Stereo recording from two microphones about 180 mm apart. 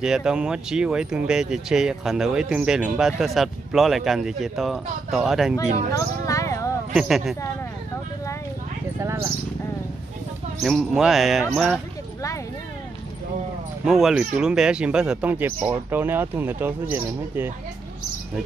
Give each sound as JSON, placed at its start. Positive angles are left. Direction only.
{"t": 0.0, "sound": "speech", "side_deg": -5}
{"t": 5.9, "sound": "a sound", "side_deg": 20}
{"t": 6.9, "sound": "speech", "side_deg": 0}
{"t": 10.6, "sound": "speech", "side_deg": 0}
{"t": 13.8, "sound": "speech", "side_deg": 0}